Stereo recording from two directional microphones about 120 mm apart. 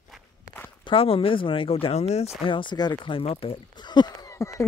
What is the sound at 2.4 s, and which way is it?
Speech, 40° left (ahead or behind).